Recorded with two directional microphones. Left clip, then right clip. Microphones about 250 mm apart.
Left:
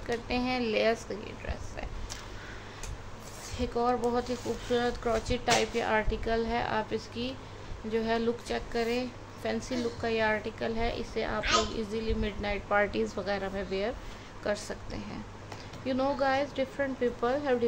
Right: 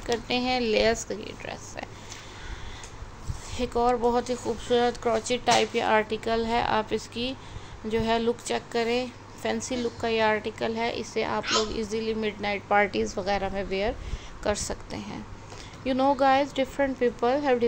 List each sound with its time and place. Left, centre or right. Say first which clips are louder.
0.0 s speech: right 5 dB; centre
3.5 s speech: right 5 dB; centre